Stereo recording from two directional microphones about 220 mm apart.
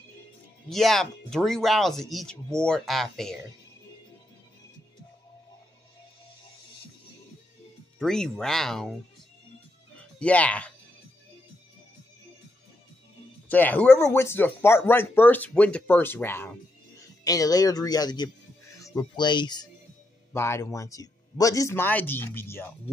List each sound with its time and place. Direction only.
0.7 s speech: centre (ahead or behind)
8.0 s speech: 5° left (ahead or behind)
9.9 s speech: 5° left (ahead or behind)
13.5 s speech: 10° left (ahead or behind)